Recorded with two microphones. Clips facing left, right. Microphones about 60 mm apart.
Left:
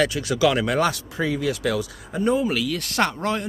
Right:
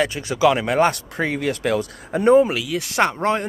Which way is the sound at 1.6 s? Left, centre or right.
Right.